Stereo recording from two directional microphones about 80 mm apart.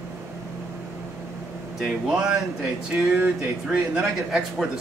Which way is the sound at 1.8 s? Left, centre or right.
Centre.